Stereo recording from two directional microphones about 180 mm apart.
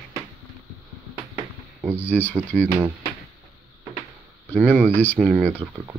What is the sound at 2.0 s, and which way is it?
Speech, 10° left (ahead or behind).